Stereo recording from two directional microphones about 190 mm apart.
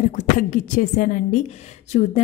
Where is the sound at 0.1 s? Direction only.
45° left (ahead or behind).